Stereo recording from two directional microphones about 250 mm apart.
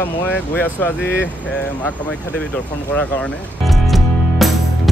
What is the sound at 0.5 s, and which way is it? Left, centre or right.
Speech, centre.